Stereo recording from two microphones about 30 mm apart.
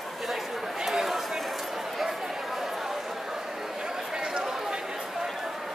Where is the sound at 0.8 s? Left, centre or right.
Centre.